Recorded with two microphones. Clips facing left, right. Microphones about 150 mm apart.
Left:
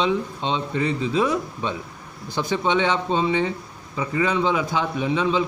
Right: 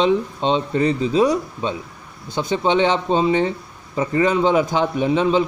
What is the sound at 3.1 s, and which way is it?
Speech, 40° right (ahead or behind).